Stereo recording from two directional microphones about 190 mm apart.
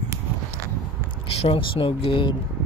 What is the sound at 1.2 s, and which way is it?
Speech, 30° left (ahead or behind).